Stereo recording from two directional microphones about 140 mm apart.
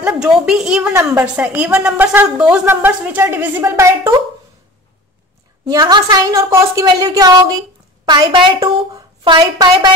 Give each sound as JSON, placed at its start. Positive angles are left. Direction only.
{"t": 0.0, "sound": "a woman's voice", "side_deg": -5}
{"t": 5.7, "sound": "a woman's voice", "side_deg": -30}